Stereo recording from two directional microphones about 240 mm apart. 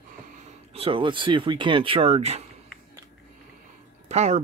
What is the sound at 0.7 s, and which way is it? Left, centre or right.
Speech, right.